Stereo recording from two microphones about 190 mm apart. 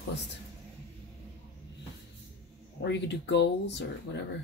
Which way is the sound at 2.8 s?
65° left (ahead or behind).